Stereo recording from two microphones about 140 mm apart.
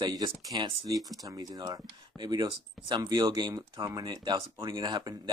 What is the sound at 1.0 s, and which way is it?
Speech, centre (ahead or behind).